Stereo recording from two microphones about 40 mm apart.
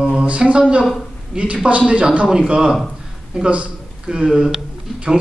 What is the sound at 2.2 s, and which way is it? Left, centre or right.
Speech, centre.